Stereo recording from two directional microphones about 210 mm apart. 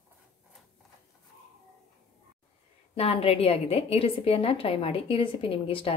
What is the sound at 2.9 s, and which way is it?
A woman's voice, 30° left (ahead or behind).